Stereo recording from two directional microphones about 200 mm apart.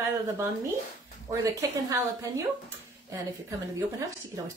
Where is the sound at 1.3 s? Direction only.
15° right (ahead or behind).